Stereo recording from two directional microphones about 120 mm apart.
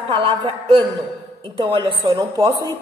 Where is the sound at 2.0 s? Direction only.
30° right (ahead or behind).